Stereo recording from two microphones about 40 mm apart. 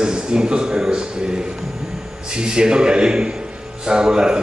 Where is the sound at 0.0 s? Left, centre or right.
Centre.